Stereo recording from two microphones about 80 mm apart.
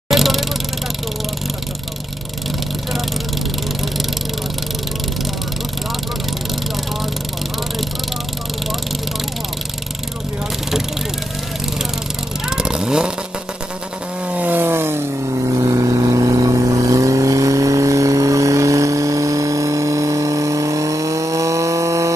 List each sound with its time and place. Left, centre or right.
0.1 s vehicle: centre
12.4 s vehicle: centre
14.3 s vehicle: right
15.2 s vehicle: right